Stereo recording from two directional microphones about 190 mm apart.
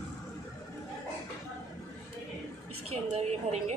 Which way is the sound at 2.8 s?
35° right (ahead or behind).